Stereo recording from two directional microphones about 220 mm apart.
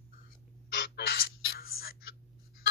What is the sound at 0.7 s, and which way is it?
Bird, 50° left (ahead or behind).